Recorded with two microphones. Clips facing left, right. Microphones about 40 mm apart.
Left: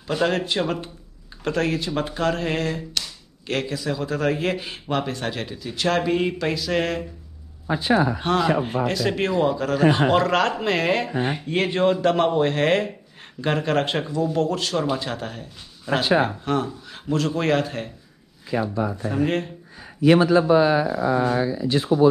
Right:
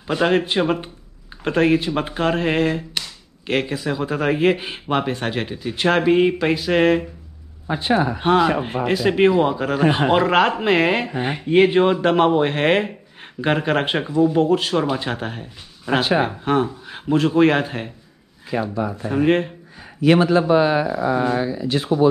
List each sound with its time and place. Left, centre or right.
0.0 s a man's voice: right
7.6 s speech: right
8.6 s a man's voice: right
19.1 s speech: right
20.2 s speech: right